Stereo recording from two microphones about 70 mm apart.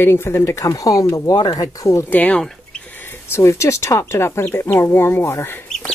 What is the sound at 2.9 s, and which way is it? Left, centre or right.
Speech, left.